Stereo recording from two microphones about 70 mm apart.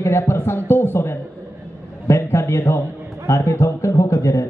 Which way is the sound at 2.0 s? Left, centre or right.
Left.